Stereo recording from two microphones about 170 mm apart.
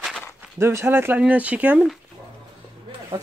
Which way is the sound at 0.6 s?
15° right (ahead or behind).